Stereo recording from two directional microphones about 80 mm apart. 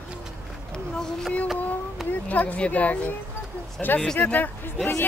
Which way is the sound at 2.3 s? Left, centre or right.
Centre.